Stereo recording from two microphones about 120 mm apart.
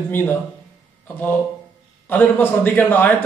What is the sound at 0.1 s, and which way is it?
Speech, 15° left (ahead or behind).